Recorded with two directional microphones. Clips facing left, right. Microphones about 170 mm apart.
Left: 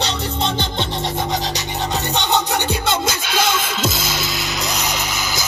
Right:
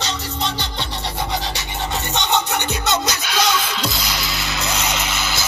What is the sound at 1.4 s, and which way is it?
Filing, 40° left (ahead or behind).